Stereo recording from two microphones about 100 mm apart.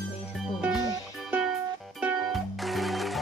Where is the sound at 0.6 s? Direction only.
10° right (ahead or behind).